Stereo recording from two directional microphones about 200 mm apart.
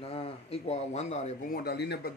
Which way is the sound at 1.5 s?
55° left (ahead or behind).